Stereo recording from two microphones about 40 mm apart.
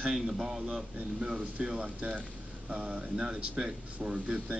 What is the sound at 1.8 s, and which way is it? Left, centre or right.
Speech, right.